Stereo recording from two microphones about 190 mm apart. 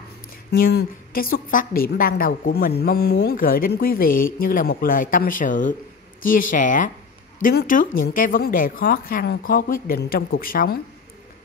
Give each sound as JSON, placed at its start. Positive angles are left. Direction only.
{"t": 0.5, "sound": "speech", "side_deg": 55}